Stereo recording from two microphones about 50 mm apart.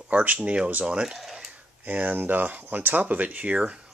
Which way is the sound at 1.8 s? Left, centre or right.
Right.